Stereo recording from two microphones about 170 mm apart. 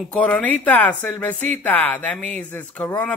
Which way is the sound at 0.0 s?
5° left (ahead or behind).